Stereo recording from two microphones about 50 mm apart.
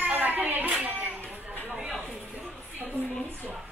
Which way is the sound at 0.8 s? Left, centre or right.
Right.